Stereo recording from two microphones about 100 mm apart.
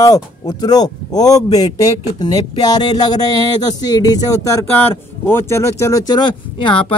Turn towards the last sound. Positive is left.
turn(degrees=55)  # may be behind; listen again after turning